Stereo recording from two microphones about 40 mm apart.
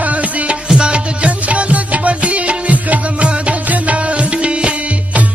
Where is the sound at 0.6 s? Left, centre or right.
Right.